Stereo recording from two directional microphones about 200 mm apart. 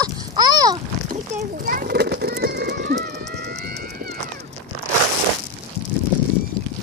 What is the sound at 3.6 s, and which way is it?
Run, 50° right (ahead or behind).